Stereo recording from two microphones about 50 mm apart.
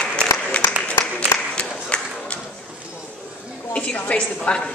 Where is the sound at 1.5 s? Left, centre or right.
Left.